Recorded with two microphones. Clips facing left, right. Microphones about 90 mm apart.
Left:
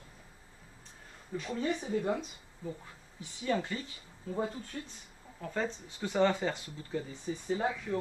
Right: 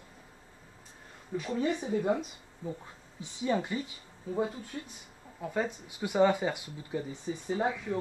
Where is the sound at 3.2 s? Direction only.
20° right (ahead or behind).